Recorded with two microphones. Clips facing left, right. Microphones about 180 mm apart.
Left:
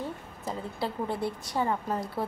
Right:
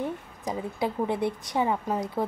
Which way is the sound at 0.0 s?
15° right (ahead or behind).